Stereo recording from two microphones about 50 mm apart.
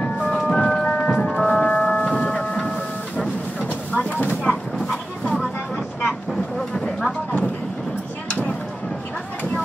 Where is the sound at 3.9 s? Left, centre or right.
Left.